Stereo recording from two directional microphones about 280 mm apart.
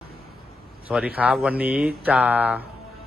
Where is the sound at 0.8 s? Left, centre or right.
Centre.